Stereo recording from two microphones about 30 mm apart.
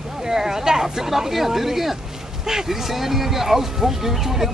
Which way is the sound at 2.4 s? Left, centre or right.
Centre.